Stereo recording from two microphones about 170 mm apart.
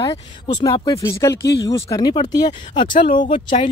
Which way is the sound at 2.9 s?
50° left (ahead or behind).